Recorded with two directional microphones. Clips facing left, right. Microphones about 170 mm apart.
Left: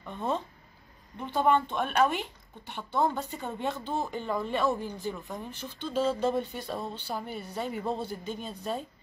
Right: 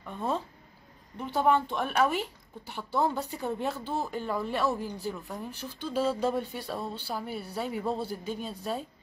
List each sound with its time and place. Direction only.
0.0 s speech: 5° right (ahead or behind)